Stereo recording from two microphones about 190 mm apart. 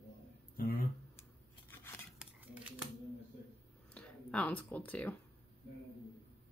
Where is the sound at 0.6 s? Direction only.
50° left (ahead or behind).